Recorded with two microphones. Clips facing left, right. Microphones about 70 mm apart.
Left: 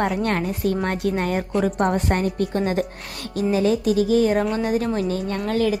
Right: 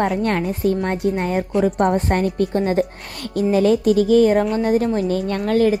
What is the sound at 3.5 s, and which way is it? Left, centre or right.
Speech, right.